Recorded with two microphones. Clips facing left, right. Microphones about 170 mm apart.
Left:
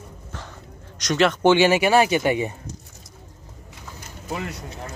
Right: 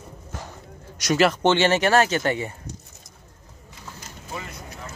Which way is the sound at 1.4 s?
10° left (ahead or behind).